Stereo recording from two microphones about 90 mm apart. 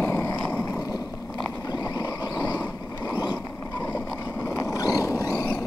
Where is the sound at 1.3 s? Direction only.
45° left (ahead or behind).